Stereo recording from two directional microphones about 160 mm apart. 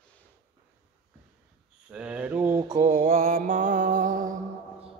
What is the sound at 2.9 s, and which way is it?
Music, 45° right (ahead or behind).